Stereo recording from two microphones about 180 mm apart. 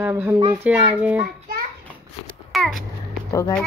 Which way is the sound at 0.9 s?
10° right (ahead or behind).